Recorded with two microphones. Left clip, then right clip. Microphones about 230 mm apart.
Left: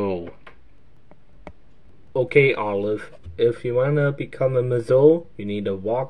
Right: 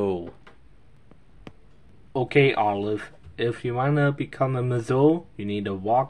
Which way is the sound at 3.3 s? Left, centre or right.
Right.